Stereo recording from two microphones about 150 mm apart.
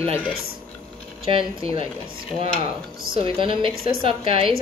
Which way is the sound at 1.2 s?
35° right (ahead or behind).